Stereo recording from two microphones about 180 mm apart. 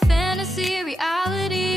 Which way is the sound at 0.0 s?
Centre (ahead or behind).